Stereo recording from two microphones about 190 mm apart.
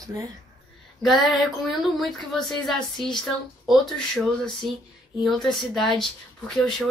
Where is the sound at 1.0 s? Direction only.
Centre (ahead or behind).